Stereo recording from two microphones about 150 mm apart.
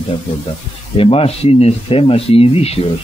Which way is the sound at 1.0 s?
40° left (ahead or behind).